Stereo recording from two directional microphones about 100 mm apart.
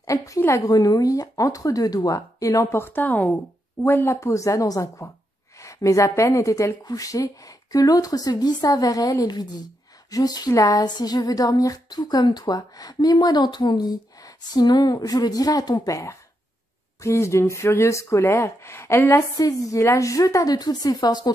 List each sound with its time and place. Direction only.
0.0 s a woman's voice: 30° left (ahead or behind)